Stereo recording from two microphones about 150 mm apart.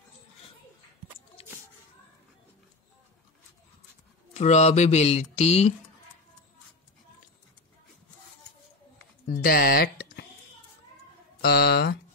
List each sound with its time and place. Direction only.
4.3 s speech: 50° left (ahead or behind)
9.2 s a sound: 80° left
11.4 s speech: 90° left